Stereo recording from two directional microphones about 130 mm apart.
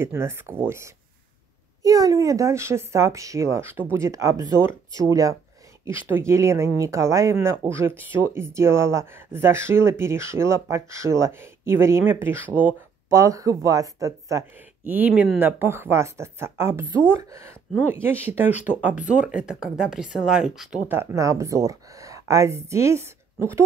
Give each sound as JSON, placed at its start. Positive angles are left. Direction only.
{"t": 0.0, "sound": "speech", "side_deg": -20}
{"t": 13.2, "sound": "speech", "side_deg": -25}
{"t": 14.9, "sound": "speech", "side_deg": -15}
{"t": 18.0, "sound": "speech", "side_deg": -15}
{"t": 20.9, "sound": "speech", "side_deg": -20}